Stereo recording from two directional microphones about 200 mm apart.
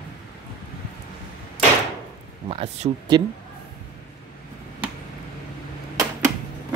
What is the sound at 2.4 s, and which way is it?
Speech, 30° right (ahead or behind).